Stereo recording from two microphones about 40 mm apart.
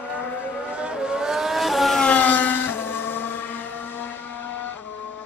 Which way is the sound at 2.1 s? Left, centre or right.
Left.